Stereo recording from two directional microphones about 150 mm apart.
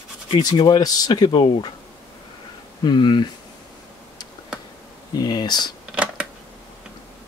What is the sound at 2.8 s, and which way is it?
Speech, 30° left (ahead or behind).